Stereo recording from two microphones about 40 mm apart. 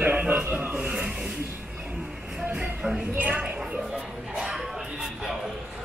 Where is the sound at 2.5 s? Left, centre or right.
Right.